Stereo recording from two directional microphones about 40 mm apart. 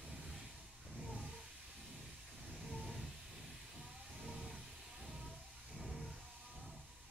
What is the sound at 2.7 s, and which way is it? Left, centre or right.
Hiss, centre.